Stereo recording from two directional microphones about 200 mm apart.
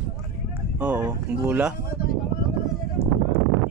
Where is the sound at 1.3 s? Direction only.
5° right (ahead or behind).